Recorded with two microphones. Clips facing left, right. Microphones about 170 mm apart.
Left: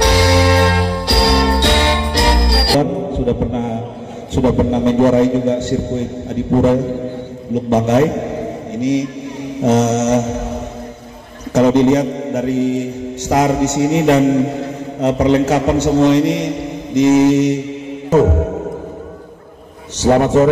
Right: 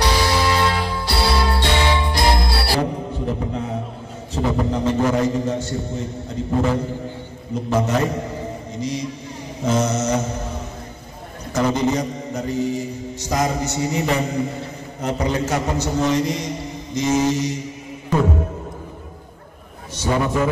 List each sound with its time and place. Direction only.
0.0 s music: 75° left (ahead or behind)
4.6 s mantra: 70° left (ahead or behind)
7.5 s a man's voice: 70° left (ahead or behind)
9.6 s mantra: 70° left (ahead or behind)
11.5 s mantra: 65° left (ahead or behind)
18.2 s music: 75° left (ahead or behind)
20.0 s mantra: 75° left (ahead or behind)